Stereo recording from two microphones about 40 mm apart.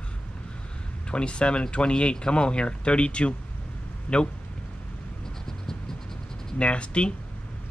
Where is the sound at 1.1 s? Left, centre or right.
Left.